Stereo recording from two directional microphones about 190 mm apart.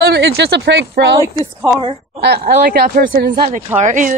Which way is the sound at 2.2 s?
60° right (ahead or behind).